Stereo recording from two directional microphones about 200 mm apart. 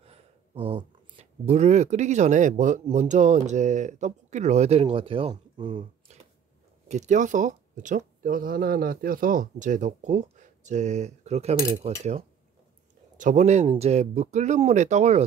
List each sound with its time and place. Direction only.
0.0 s speech: 30° right (ahead or behind)
6.9 s speech: 35° right (ahead or behind)
11.5 s cutlery: 20° right (ahead or behind)
12.0 s speech: 35° right (ahead or behind)